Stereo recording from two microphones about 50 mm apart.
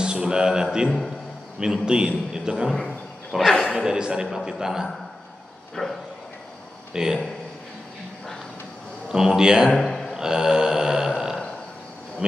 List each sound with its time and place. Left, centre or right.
0.0 s speech: centre
0.8 s a man's voice: centre
1.6 s a man's voice: centre
3.3 s speech: centre
3.8 s a man's voice: centre
5.8 s speech: centre
6.9 s speech: centre
9.1 s a man's voice: centre
9.8 s a sound: centre
10.1 s a sound: centre
12.2 s speech: centre